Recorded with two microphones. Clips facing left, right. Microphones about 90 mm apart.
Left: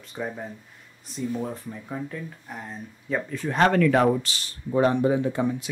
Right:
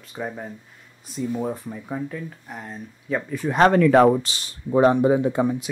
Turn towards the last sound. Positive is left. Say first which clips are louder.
# right 4 dB
turn(degrees=-20)  # may be behind; listen again after turning